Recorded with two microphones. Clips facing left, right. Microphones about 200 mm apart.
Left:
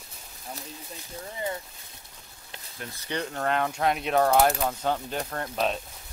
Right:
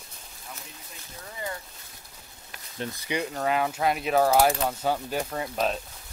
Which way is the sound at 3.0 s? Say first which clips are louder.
Even; 10° right (ahead or behind).